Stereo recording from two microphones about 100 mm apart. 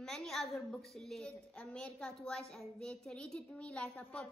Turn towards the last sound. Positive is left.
turn(degrees=15)  # may be behind; listen again after turning